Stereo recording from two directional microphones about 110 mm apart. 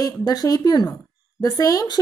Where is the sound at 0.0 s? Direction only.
35° left (ahead or behind).